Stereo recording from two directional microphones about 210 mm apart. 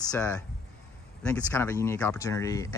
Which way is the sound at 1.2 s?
10° left (ahead or behind).